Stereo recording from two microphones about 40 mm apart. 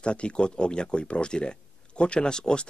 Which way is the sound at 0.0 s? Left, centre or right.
Left.